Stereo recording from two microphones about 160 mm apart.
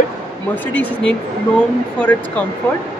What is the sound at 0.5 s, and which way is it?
Speech, 10° left (ahead or behind).